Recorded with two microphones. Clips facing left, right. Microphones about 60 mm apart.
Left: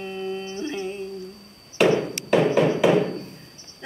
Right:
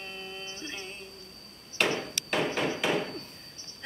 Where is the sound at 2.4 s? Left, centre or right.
Centre.